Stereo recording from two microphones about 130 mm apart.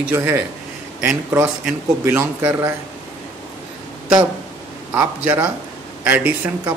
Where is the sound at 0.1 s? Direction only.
15° right (ahead or behind).